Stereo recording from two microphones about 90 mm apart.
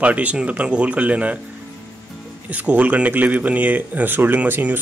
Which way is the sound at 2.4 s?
15° right (ahead or behind).